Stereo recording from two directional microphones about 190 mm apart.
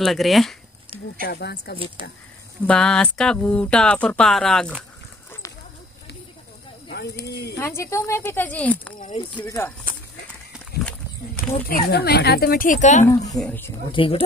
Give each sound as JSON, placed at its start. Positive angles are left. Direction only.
{"t": 0.0, "sound": "speech", "side_deg": 0}
{"t": 1.2, "sound": "speech", "side_deg": 55}
{"t": 2.0, "sound": "speech", "side_deg": -25}
{"t": 2.6, "sound": "speech", "side_deg": 5}
{"t": 6.9, "sound": "speech", "side_deg": 60}
{"t": 7.5, "sound": "speech", "side_deg": 15}
{"t": 10.5, "sound": "a sound", "side_deg": 5}
{"t": 11.4, "sound": "snake", "side_deg": 50}
{"t": 11.9, "sound": "speech", "side_deg": 60}
{"t": 13.0, "sound": "speech", "side_deg": 20}
{"t": 13.9, "sound": "speech", "side_deg": 30}